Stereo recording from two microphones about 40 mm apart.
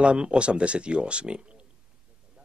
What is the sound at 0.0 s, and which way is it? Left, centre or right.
Speech, right.